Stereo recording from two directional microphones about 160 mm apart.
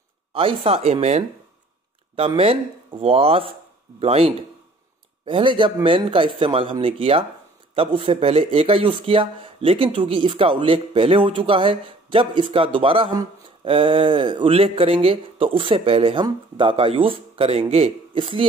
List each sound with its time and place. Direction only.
0.3 s speech: 35° right (ahead or behind)